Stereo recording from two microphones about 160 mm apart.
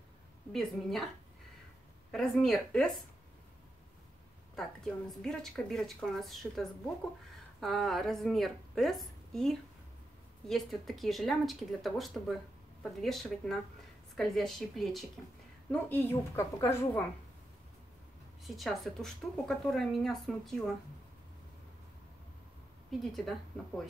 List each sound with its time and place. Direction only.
0.5 s a woman's voice: centre (ahead or behind)
4.6 s a woman's voice: centre (ahead or behind)
7.6 s a woman's voice: centre (ahead or behind)
15.7 s a woman's voice: 10° left (ahead or behind)
18.4 s a woman's voice: centre (ahead or behind)
22.8 s a woman's voice: centre (ahead or behind)